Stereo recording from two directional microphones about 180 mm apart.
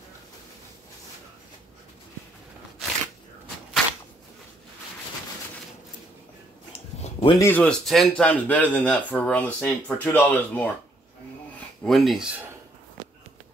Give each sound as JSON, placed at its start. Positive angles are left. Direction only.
{"t": 7.0, "sound": "a sound", "side_deg": 30}
{"t": 7.3, "sound": "a man's voice", "side_deg": 10}
{"t": 11.8, "sound": "speech", "side_deg": 0}